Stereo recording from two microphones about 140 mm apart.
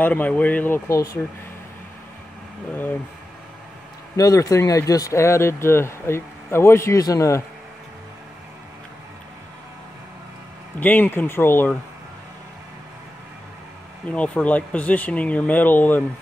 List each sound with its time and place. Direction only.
0.0 s speech: 10° left (ahead or behind)
4.2 s speech: 25° left (ahead or behind)
10.8 s speech: 15° left (ahead or behind)
14.0 s speech: 10° left (ahead or behind)